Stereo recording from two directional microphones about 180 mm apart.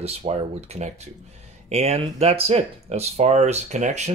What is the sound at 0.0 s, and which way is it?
Speech, 35° right (ahead or behind).